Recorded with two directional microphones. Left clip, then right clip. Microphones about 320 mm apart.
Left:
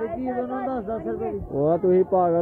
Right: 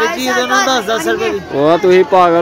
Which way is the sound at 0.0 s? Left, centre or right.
Right.